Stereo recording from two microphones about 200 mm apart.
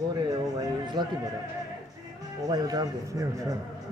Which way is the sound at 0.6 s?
20° right (ahead or behind).